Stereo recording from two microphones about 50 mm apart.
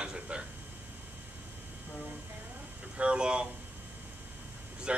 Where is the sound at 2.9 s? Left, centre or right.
Right.